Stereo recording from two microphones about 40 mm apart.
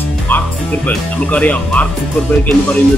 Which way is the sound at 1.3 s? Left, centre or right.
Left.